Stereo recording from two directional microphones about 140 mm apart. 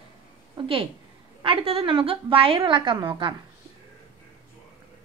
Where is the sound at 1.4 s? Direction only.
40° right (ahead or behind).